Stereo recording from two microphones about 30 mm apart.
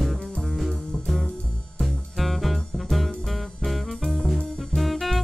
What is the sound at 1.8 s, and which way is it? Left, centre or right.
Music, centre.